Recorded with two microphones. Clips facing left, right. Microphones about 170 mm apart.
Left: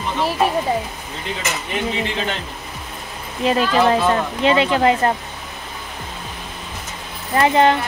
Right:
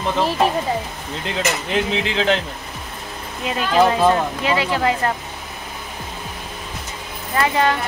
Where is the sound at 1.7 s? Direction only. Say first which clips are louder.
Left 1 dB; 90° right.